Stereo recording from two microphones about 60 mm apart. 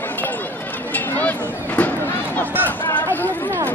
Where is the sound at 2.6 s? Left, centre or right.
Left.